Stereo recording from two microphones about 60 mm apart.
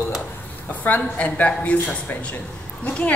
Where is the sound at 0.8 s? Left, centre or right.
Left.